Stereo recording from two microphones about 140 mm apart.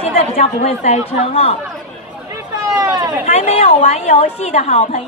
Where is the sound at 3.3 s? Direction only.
45° left (ahead or behind).